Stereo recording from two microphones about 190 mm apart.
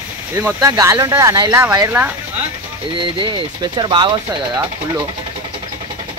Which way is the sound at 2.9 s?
25° right (ahead or behind).